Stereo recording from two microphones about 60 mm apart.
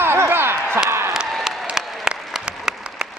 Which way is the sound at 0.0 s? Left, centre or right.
Right.